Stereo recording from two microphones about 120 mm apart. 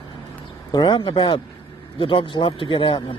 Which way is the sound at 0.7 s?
40° left (ahead or behind).